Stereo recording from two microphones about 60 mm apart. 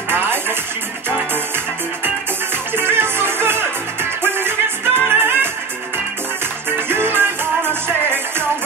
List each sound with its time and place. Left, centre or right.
0.1 s music: right
2.7 s music: right
6.9 s music: right